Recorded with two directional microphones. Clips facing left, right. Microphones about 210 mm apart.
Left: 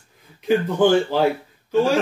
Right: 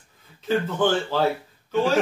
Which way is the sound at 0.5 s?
15° left (ahead or behind).